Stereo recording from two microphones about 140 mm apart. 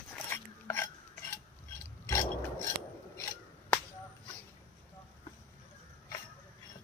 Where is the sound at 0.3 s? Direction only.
15° left (ahead or behind).